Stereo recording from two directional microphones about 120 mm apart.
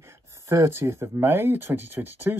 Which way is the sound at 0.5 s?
25° right (ahead or behind).